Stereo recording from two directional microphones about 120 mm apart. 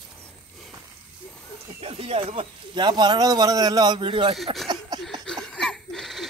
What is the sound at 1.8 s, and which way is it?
Speech, 50° right (ahead or behind).